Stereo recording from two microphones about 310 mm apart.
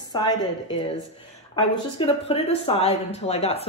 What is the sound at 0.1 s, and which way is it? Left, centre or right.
A woman's voice, centre.